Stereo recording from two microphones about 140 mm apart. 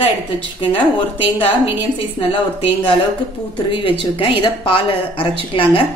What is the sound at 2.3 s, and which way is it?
Speech, 40° left (ahead or behind).